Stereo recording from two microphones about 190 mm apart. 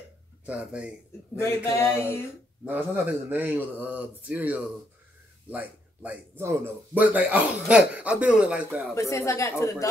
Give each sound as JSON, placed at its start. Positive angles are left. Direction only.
{"t": 0.5, "sound": "speech", "side_deg": -5}
{"t": 1.4, "sound": "speech", "side_deg": 15}
{"t": 2.6, "sound": "speech", "side_deg": -10}
{"t": 8.9, "sound": "speech", "side_deg": 15}